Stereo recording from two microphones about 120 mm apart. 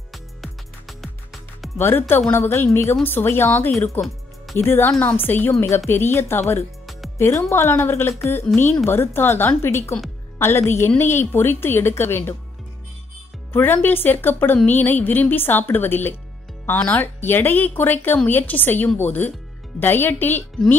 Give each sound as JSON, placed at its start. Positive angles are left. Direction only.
{"t": 0.1, "sound": "music", "side_deg": 0}
{"t": 1.8, "sound": "a woman's voice", "side_deg": 20}
{"t": 13.5, "sound": "speech", "side_deg": 15}